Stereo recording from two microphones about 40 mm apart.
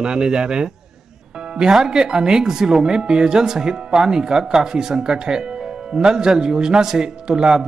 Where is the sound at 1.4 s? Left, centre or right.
Centre.